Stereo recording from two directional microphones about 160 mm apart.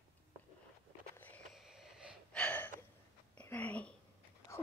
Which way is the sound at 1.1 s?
10° left (ahead or behind).